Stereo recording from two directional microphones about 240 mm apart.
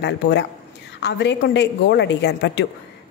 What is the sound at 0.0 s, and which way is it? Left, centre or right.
A man's voice, left.